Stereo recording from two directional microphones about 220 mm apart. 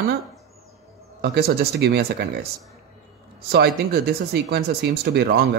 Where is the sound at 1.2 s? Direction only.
45° right (ahead or behind).